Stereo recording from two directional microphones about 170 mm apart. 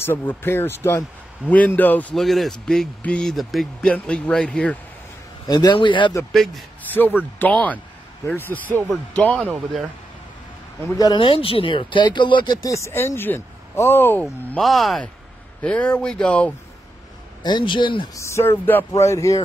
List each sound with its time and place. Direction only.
0.0 s speech: 10° left (ahead or behind)
5.5 s speech: 25° left (ahead or behind)
6.3 s speech: centre (ahead or behind)
9.4 s speech: 5° right (ahead or behind)
11.0 s speech: 25° left (ahead or behind)
14.5 s speech: centre (ahead or behind)
17.4 s speech: 25° left (ahead or behind)